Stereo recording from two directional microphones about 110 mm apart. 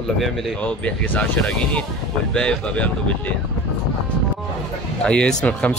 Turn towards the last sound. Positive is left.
turn(degrees=10)  # may be behind; listen again after turning